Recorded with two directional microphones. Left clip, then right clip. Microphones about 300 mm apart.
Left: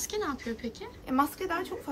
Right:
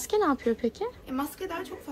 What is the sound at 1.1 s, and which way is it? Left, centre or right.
Speech, centre.